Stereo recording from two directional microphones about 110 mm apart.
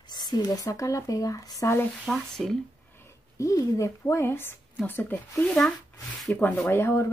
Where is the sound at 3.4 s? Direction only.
30° left (ahead or behind).